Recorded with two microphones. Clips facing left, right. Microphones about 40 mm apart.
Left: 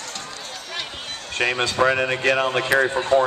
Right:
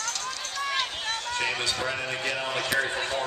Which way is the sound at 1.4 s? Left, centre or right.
Left.